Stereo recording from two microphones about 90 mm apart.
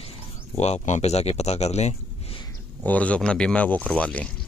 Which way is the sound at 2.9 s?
15° left (ahead or behind).